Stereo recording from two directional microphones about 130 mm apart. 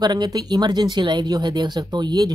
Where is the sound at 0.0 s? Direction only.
35° right (ahead or behind).